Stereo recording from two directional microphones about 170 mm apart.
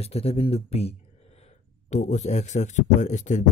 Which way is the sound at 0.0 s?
35° left (ahead or behind).